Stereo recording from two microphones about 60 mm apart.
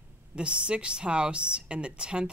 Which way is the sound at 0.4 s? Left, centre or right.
Centre.